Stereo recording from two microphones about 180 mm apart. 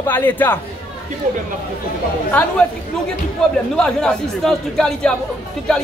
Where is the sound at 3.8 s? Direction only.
5° left (ahead or behind).